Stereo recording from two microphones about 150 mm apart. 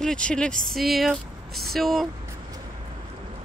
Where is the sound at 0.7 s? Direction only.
Centre (ahead or behind).